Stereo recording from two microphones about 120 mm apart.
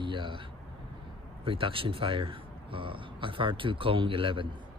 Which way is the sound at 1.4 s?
50° right (ahead or behind).